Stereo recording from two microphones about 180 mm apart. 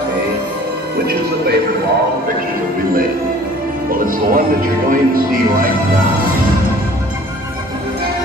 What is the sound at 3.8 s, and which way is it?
Music, 50° right (ahead or behind).